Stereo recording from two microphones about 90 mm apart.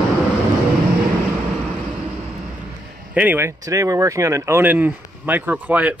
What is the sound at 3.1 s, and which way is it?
Speech, 15° right (ahead or behind).